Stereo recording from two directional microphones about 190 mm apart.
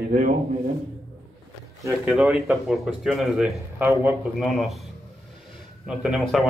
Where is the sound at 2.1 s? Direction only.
Centre (ahead or behind).